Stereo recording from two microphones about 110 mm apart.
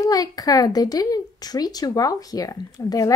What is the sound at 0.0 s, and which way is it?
A woman's voice, 35° left (ahead or behind).